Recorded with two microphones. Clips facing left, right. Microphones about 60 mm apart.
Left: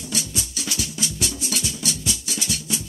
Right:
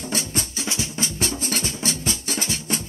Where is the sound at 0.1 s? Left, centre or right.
Right.